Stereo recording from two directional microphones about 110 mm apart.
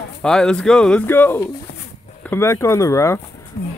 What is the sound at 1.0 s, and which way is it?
Speech, 20° left (ahead or behind).